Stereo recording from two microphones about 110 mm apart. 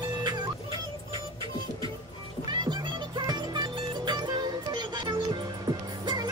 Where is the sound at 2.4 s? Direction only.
45° right (ahead or behind).